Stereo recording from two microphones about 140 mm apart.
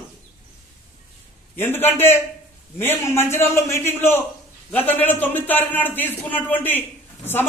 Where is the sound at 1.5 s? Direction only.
15° left (ahead or behind).